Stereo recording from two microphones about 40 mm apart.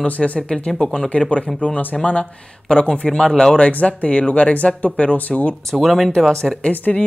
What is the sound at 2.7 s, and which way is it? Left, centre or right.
Speech, left.